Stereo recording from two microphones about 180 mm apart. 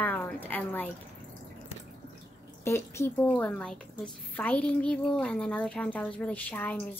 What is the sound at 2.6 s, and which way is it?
A woman's voice, 15° left (ahead or behind).